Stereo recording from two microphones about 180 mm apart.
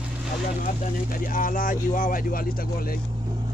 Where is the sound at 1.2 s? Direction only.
50° left (ahead or behind).